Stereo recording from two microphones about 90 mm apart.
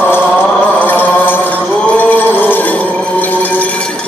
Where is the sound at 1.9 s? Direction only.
20° left (ahead or behind).